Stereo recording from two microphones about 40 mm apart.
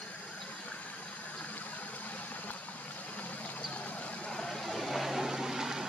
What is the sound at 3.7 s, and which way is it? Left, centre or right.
Vehicle, left.